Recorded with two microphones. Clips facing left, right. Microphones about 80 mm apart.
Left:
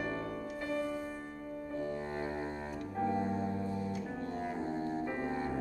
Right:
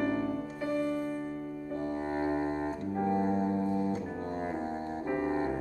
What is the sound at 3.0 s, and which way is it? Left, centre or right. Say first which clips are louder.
Organ: right 4 dB; centre.